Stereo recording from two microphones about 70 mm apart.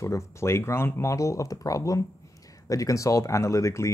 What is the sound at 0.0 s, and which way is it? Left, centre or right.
Speech, left.